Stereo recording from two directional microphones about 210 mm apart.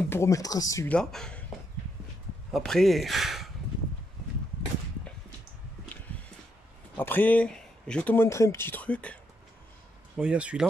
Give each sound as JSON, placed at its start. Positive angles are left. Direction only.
{"t": 0.1, "sound": "speech", "side_deg": 15}
{"t": 0.9, "sound": "speech", "side_deg": 5}
{"t": 2.5, "sound": "speech", "side_deg": 0}
{"t": 7.0, "sound": "speech", "side_deg": 10}
{"t": 10.1, "sound": "speech", "side_deg": -5}